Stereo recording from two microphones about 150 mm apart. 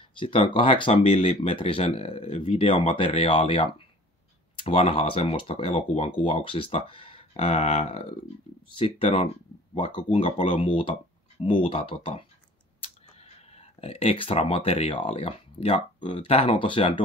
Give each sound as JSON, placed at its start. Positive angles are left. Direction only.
{"t": 0.2, "sound": "speech", "side_deg": 35}